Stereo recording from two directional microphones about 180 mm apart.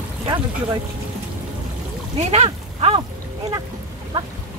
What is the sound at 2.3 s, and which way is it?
Speech, 35° right (ahead or behind).